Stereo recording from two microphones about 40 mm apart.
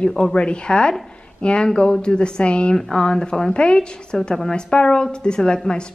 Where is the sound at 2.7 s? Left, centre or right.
Centre.